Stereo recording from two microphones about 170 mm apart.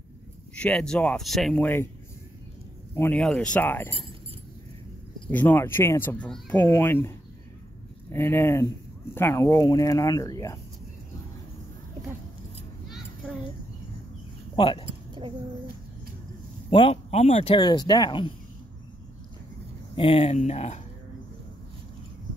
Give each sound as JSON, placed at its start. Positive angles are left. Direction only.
{"t": 0.6, "sound": "speech", "side_deg": 5}
{"t": 2.9, "sound": "speech", "side_deg": 10}
{"t": 5.3, "sound": "speech", "side_deg": 10}
{"t": 14.5, "sound": "speech", "side_deg": 30}
{"t": 16.7, "sound": "speech", "side_deg": 35}
{"t": 17.6, "sound": "speech", "side_deg": 25}
{"t": 20.0, "sound": "speech", "side_deg": 35}